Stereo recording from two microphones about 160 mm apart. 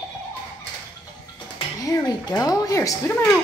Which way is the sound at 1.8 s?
20° left (ahead or behind).